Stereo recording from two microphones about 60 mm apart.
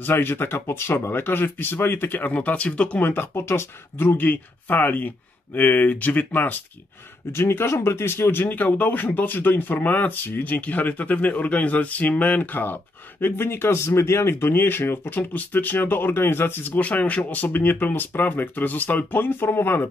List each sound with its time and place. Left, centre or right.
0.0 s speech: left
3.0 s speech: left
7.3 s speech: left